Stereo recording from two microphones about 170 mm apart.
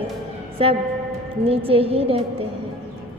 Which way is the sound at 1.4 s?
35° right (ahead or behind).